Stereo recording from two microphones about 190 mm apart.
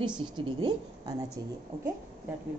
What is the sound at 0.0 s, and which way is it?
Speech, 25° right (ahead or behind).